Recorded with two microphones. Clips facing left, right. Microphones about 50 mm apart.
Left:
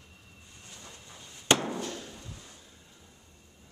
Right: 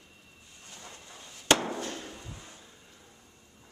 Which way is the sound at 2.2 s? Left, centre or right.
Centre.